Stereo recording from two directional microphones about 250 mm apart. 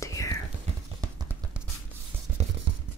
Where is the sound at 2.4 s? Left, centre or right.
Right.